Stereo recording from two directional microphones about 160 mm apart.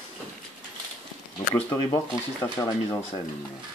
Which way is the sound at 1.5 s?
15° left (ahead or behind).